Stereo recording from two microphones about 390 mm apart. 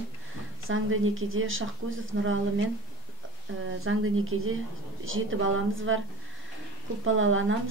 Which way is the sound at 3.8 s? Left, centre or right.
Right.